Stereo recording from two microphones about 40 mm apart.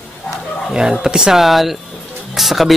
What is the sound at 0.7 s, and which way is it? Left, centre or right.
Speech, centre.